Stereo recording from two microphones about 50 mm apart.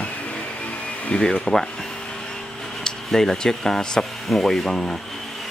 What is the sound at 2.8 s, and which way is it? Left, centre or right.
Speech, centre.